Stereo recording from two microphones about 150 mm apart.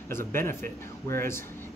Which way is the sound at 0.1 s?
15° left (ahead or behind).